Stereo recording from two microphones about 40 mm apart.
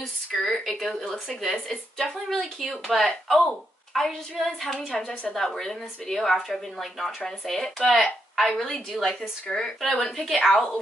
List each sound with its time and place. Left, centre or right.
0.3 s speech: centre
4.7 s a woman's voice: left
5.3 s speech: centre